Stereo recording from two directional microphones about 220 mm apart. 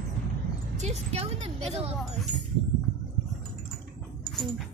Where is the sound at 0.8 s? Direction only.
30° right (ahead or behind).